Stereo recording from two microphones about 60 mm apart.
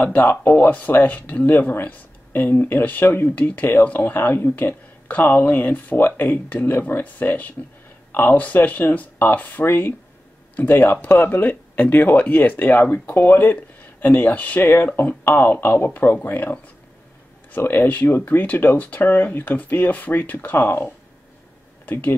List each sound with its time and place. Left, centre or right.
0.0 s speech: left